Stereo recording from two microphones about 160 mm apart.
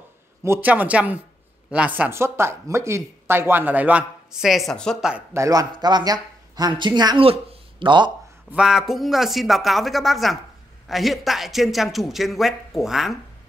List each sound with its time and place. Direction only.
0.4 s speech: 15° right (ahead or behind); by 5.1 s 5° left (ahead or behind)
5.1 s speech: 15° right (ahead or behind)
8.5 s speech: 5° right (ahead or behind)